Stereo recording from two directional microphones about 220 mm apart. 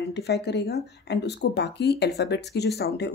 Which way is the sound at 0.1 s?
50° left (ahead or behind).